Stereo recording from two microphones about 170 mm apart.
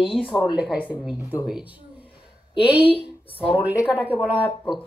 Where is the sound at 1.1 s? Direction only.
5° right (ahead or behind).